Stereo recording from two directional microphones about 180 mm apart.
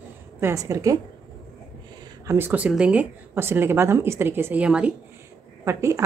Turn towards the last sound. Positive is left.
turn(degrees=-15)  # may be behind; listen again after turning